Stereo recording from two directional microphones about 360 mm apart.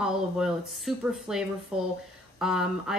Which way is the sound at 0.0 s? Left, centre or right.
Centre.